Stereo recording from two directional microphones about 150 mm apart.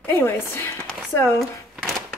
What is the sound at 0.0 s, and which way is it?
Speech, 15° left (ahead or behind).